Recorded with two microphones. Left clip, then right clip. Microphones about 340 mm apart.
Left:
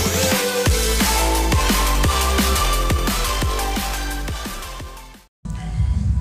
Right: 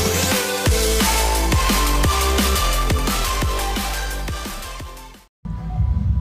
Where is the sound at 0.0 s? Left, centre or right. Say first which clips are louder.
Left 1 dB; centre.